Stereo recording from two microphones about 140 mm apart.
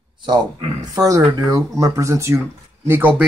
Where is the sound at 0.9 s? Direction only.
25° right (ahead or behind).